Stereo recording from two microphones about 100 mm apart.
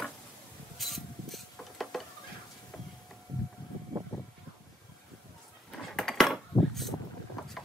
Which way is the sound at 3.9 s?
35° right (ahead or behind).